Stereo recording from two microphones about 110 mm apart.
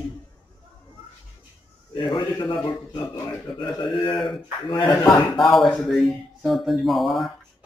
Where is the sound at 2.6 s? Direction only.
35° left (ahead or behind).